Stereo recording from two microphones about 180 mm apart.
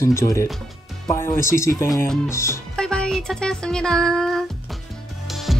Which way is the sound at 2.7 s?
5° left (ahead or behind).